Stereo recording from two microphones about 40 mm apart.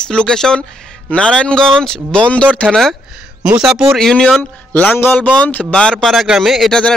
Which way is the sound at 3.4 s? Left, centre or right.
Right.